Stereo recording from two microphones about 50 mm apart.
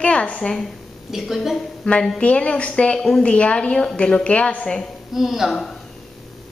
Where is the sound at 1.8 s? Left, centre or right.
Centre.